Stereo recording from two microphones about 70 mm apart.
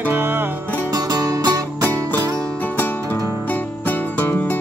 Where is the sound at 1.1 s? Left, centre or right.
Right.